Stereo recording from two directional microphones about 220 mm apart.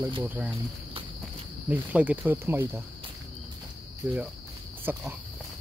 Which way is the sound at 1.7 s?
5° right (ahead or behind).